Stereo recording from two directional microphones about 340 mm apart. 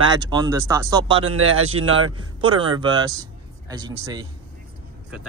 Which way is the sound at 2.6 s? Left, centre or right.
Centre.